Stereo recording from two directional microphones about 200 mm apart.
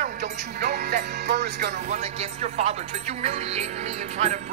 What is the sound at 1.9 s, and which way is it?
Speech, 35° right (ahead or behind).